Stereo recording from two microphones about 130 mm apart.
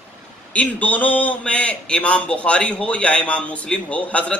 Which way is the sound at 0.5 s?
10° left (ahead or behind).